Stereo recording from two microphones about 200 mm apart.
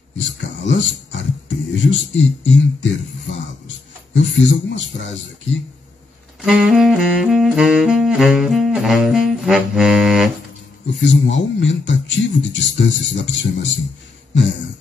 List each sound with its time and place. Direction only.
0.2 s a man's voice: 65° left (ahead or behind)
6.4 s saxophone: 5° right (ahead or behind)
10.9 s a man's voice: 65° left (ahead or behind)